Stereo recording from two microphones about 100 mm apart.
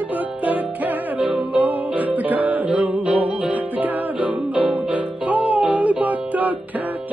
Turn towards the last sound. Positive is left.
turn(degrees=-15)  # may be behind; listen again after turning